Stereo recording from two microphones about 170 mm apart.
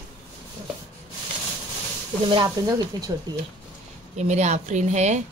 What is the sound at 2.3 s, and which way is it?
Speech, 25° right (ahead or behind).